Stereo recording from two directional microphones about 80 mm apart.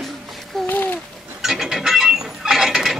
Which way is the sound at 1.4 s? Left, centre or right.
Centre.